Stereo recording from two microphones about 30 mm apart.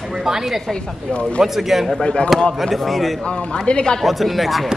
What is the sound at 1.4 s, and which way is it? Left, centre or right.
A man's voice, centre.